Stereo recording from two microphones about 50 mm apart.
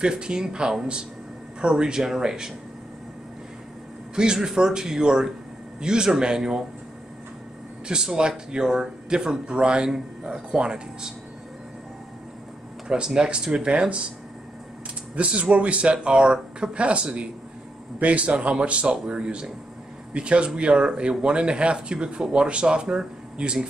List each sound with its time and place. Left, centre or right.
0.0 s speech: centre
4.1 s speech: centre
7.9 s speech: centre
12.8 s speech: centre
15.1 s speech: right